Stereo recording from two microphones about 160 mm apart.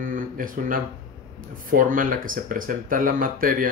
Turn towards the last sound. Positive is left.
turn(degrees=-60)  # may be behind; listen again after turning